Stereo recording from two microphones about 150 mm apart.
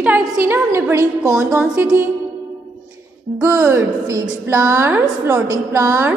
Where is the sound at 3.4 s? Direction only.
15° right (ahead or behind).